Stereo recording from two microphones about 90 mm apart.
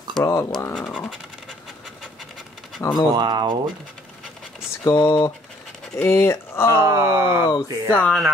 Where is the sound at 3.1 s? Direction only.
55° right (ahead or behind).